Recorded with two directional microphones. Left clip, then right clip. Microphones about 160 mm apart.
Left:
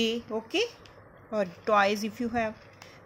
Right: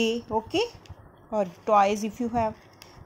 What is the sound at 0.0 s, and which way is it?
A woman's voice, 15° right (ahead or behind).